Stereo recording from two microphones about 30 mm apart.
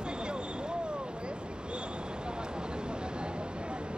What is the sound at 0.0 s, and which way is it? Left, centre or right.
Vehicle, right.